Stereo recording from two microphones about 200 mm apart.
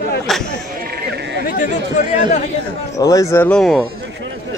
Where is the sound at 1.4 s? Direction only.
40° left (ahead or behind).